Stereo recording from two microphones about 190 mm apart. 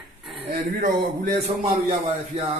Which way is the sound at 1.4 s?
30° right (ahead or behind).